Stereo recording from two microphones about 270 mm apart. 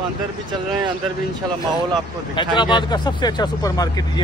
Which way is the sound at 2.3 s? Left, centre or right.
Centre.